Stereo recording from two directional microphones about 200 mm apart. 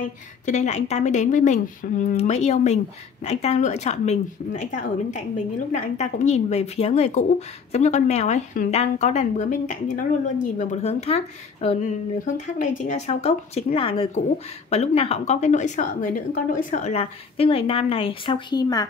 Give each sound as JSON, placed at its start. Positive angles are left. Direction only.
{"t": 0.5, "sound": "a woman's voice", "side_deg": 35}